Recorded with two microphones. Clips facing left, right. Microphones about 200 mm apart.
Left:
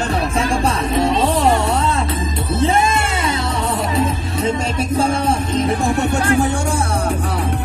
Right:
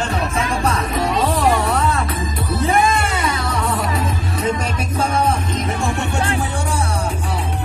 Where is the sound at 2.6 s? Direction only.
25° left (ahead or behind); by 7.1 s 45° left (ahead or behind).